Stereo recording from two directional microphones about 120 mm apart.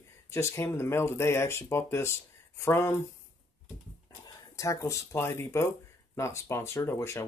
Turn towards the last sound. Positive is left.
turn(degrees=20)  # may be behind; listen again after turning